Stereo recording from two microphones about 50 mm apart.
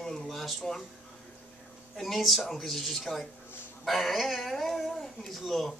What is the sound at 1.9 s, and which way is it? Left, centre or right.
Speech, centre.